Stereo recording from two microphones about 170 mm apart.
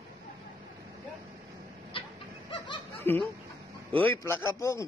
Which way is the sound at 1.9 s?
30° left (ahead or behind).